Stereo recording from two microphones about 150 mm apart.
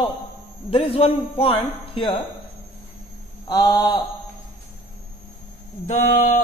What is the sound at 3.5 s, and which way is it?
Mantra, 25° left (ahead or behind).